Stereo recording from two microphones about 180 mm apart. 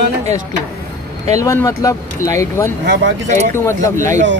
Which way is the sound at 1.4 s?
15° left (ahead or behind).